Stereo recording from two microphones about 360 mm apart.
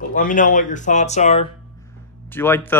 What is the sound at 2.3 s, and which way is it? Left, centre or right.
Speech, centre.